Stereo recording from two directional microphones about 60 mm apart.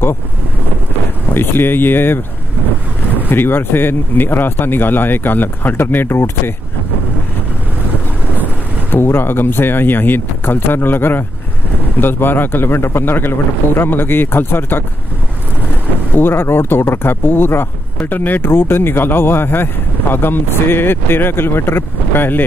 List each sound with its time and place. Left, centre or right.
1.3 s speech: left
3.3 s speech: left
6.0 s speech: left
8.9 s speech: left
16.2 s speech: left